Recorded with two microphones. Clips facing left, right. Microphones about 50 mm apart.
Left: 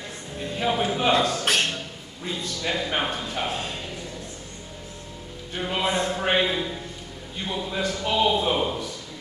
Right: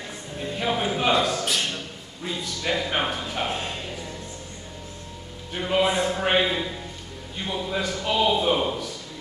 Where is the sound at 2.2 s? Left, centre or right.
Centre.